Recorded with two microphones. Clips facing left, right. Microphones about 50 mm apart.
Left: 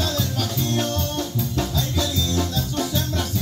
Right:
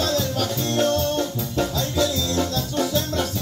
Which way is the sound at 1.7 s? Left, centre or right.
Right.